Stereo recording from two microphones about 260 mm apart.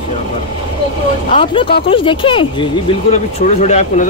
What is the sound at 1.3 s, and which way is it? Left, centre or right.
Speech, centre.